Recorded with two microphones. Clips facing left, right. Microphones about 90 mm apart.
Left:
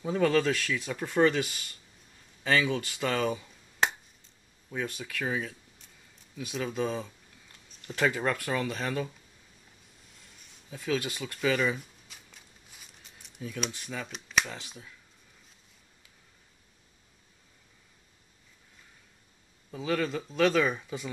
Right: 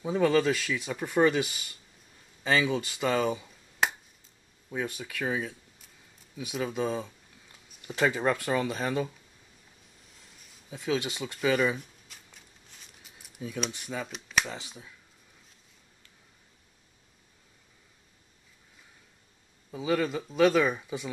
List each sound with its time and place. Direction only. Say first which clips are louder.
0.0 s speech: right 1 dB; 10° right (ahead or behind)
3.8 s finger snapping: even; centre (ahead or behind)
4.6 s speech: right 1 dB; 15° right (ahead or behind)
6.3 s a sound: right 1 dB; 10° right (ahead or behind)
7.9 s speech: right 2 dB; 15° right (ahead or behind)
10.3 s speech: right 1 dB; centre (ahead or behind); by 11.3 s 20° right (ahead or behind)
11.3 s speech: right 2 dB; 5° right (ahead or behind)
12.4 s a sound: even; centre (ahead or behind)
13.7 s speech: right 2 dB; 15° right (ahead or behind)
14.0 s speech: left 1 dB; centre (ahead or behind)
14.4 s speech: right 2 dB; 15° right (ahead or behind)
19.7 s speech: right 2 dB; 10° right (ahead or behind)